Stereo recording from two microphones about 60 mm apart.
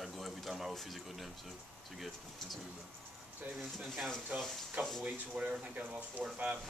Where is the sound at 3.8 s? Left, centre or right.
Centre.